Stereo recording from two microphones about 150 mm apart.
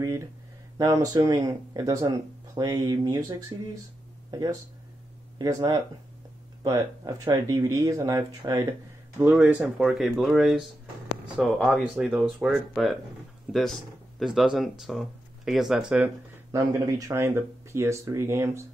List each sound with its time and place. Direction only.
0.7 s speech: 20° right (ahead or behind)
9.2 s speech: 10° right (ahead or behind)
16.5 s speech: 20° right (ahead or behind)